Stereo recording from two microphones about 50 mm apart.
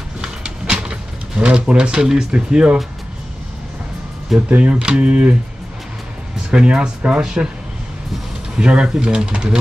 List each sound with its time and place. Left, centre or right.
0.2 s a sound: centre
1.4 s speech: right
4.5 s speech: right
6.5 s speech: right
8.5 s speech: centre